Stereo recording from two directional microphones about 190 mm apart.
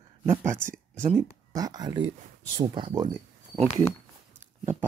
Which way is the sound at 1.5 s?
20° right (ahead or behind).